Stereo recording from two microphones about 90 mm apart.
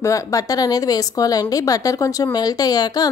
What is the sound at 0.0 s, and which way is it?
A woman's voice, 40° left (ahead or behind).